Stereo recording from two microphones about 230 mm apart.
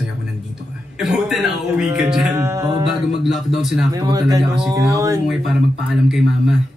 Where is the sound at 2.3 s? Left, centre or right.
Centre.